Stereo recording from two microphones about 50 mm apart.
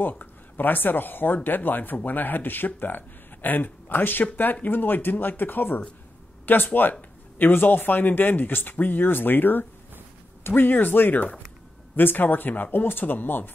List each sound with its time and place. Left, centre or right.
0.0 s speech: left